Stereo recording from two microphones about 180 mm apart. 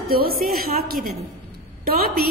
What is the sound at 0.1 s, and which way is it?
Speech, 55° right (ahead or behind).